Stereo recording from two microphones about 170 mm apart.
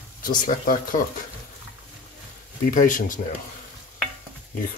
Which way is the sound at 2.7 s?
50° left (ahead or behind).